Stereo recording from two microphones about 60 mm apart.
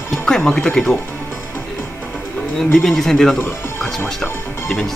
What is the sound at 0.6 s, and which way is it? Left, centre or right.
Speech, centre.